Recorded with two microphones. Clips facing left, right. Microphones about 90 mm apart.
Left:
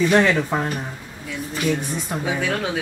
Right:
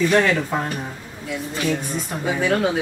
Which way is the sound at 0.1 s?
15° left (ahead or behind).